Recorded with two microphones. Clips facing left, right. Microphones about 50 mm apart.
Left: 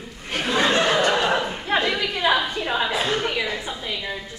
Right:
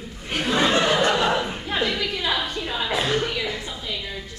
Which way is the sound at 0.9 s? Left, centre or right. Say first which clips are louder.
Even; centre.